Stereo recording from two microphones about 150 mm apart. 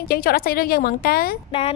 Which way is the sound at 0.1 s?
85° left.